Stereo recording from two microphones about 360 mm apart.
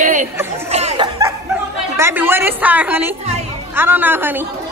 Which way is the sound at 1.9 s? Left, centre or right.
Centre.